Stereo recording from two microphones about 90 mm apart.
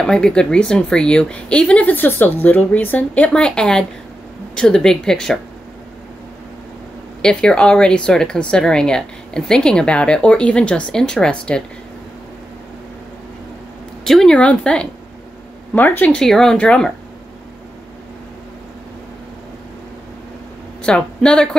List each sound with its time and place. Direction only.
0.0 s speech: 10° left (ahead or behind)
7.2 s speech: 10° left (ahead or behind)
14.0 s speech: 5° left (ahead or behind)
16.2 s speech: 5° left (ahead or behind)
20.8 s a woman's voice: 10° left (ahead or behind)